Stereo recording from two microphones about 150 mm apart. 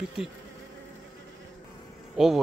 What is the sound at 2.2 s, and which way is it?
Speech, centre (ahead or behind).